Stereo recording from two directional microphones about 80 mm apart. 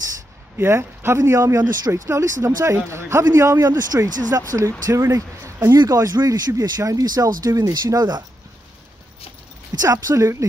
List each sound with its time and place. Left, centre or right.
0.6 s speech: right
9.8 s speech: right